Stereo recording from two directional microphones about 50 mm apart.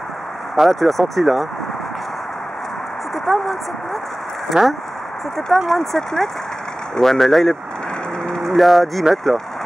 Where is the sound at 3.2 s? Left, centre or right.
Centre.